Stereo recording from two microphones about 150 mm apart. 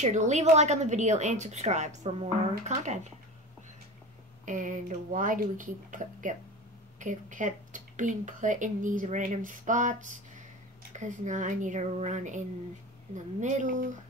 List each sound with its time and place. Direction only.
0.0 s a woman's voice: 55° right (ahead or behind)
4.5 s a woman's voice: 60° right (ahead or behind)